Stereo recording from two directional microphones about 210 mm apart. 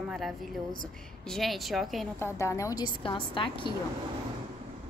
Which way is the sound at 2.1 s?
15° left (ahead or behind).